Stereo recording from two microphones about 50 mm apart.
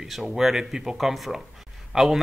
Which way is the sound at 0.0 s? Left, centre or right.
Centre.